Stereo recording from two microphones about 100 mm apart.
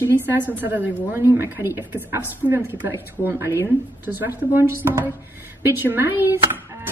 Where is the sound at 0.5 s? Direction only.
20° right (ahead or behind).